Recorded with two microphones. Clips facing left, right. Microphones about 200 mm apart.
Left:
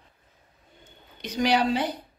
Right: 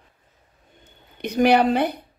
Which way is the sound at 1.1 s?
55° right (ahead or behind).